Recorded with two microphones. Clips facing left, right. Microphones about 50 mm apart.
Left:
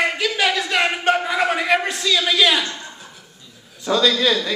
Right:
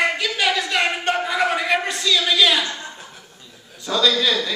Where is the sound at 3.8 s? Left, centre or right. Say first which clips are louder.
Left 2 dB; centre.